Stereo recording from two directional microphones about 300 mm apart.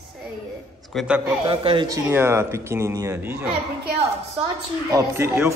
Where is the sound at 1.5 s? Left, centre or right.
Centre.